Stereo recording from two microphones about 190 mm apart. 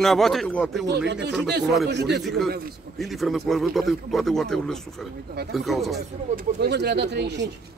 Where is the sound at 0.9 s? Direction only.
65° right (ahead or behind).